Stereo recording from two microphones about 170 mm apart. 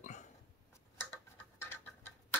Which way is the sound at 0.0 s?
45° left (ahead or behind).